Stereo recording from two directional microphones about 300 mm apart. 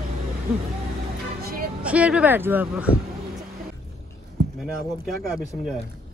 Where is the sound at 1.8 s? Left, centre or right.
Centre.